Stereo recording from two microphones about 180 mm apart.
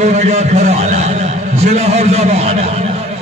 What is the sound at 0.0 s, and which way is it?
A man's voice, 40° right (ahead or behind).